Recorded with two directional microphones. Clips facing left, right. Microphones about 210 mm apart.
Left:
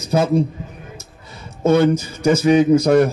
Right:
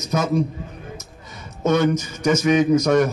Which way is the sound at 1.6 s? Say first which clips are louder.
Left 4 dB; 30° left (ahead or behind).